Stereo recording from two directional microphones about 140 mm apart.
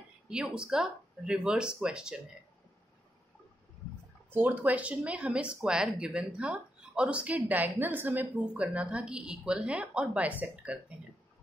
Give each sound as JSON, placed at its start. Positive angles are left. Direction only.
{"t": 0.3, "sound": "speech", "side_deg": -5}
{"t": 4.3, "sound": "speech", "side_deg": -15}